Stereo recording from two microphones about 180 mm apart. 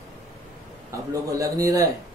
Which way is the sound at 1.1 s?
20° right (ahead or behind).